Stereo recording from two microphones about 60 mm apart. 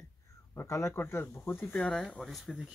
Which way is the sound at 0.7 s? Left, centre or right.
Left.